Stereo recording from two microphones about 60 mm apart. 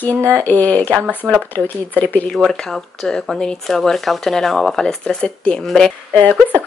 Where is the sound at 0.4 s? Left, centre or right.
Left.